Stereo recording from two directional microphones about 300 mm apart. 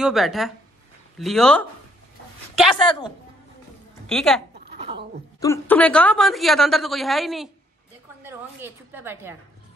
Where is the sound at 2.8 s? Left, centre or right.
Centre.